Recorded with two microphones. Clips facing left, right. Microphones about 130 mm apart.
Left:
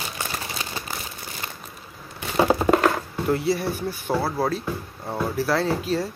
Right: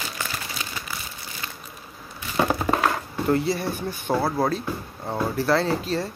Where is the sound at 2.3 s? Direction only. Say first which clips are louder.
Left 4 dB; 25° left (ahead or behind).